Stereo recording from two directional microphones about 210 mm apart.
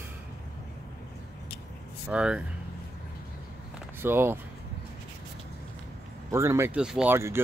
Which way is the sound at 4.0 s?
10° right (ahead or behind).